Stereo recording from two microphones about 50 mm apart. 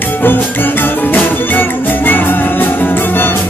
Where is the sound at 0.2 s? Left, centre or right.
Left.